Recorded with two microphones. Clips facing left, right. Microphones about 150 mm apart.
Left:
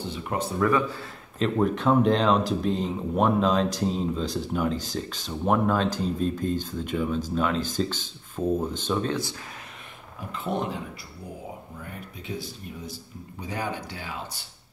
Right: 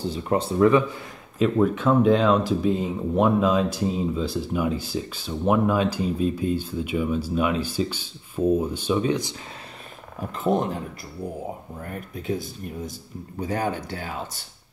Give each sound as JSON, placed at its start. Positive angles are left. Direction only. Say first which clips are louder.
{"t": 0.1, "sound": "speech", "louder": "right 5 dB", "side_deg": -30}
{"t": 1.6, "sound": "speech", "louder": "right 1 dB", "side_deg": 0}
{"t": 10.3, "sound": "speech", "louder": "right 6 dB", "side_deg": -45}
{"t": 11.8, "sound": "speech", "louder": "right 6 dB", "side_deg": -50}